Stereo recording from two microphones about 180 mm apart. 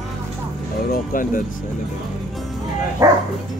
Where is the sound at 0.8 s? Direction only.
50° left (ahead or behind).